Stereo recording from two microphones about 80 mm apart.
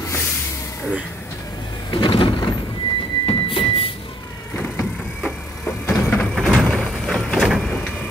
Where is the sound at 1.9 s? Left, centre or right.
Left.